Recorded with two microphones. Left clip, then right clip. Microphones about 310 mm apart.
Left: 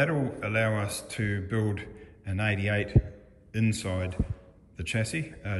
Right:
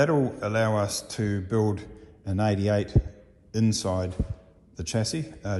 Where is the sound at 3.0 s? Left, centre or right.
Centre.